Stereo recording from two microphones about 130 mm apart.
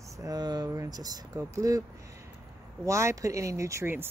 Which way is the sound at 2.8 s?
20° right (ahead or behind).